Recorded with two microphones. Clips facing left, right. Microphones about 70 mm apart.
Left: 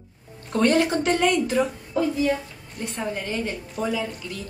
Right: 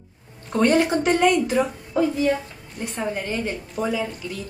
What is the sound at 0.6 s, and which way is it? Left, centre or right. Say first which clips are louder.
A woman's voice: right 1 dB; centre.